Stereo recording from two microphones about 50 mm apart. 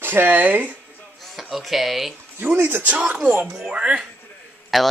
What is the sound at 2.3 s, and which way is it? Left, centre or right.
Speech, right.